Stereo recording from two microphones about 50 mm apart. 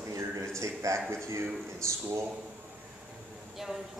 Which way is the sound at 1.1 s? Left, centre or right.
Right.